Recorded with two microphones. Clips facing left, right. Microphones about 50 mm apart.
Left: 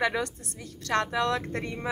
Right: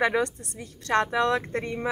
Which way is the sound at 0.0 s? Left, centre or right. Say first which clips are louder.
Right 4 dB; right.